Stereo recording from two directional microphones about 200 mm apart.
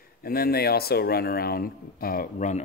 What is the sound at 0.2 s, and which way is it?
A man's voice, 50° left (ahead or behind).